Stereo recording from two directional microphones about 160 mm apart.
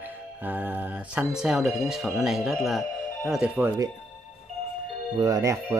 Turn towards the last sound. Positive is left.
turn(degrees=-20)  # may be behind; listen again after turning